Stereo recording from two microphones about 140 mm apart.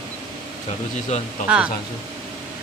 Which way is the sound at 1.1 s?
55° left (ahead or behind).